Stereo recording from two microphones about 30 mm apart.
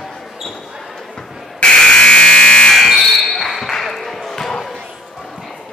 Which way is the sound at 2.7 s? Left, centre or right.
Centre.